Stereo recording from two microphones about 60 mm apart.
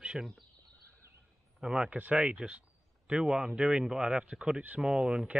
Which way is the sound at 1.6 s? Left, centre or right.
Centre.